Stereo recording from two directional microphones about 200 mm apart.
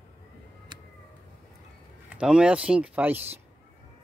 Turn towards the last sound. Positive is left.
turn(degrees=-10)  # may be behind; listen again after turning